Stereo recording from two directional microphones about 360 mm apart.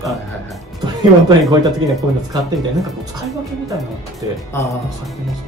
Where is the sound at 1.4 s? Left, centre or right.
Centre.